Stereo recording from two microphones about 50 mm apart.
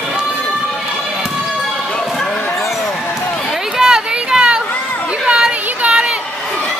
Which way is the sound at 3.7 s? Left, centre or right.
Centre.